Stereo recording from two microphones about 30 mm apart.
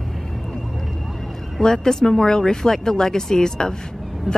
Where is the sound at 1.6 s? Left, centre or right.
Centre.